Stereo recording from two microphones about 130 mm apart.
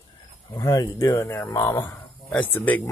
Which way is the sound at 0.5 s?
25° left (ahead or behind).